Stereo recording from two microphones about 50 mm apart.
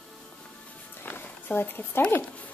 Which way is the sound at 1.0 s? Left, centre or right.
Left.